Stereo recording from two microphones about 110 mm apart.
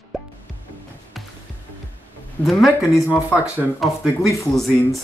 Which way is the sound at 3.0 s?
20° left (ahead or behind).